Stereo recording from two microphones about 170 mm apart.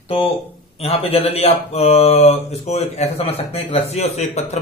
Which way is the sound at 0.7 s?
35° left (ahead or behind).